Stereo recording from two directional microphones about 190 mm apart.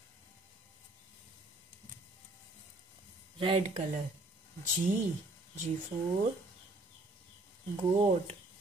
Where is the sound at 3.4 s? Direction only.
30° right (ahead or behind).